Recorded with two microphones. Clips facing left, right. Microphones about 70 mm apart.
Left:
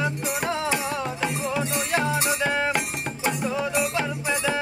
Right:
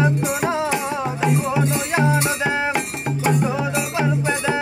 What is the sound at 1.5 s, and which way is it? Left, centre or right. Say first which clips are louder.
Music: right 4 dB; centre.